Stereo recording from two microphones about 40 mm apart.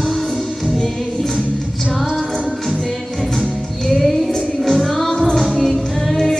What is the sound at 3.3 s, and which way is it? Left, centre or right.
Music, centre.